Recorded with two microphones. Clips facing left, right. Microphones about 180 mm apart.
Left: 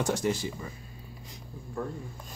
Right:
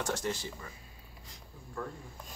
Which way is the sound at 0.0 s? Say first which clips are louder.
Left 6 dB; 10° left (ahead or behind).